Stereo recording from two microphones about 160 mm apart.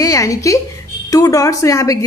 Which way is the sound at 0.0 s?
20° left (ahead or behind).